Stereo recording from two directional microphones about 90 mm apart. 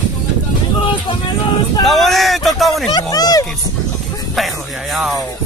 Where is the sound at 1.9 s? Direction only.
Centre (ahead or behind).